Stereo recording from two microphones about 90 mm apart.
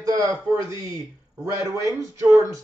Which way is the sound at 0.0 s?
40° right (ahead or behind).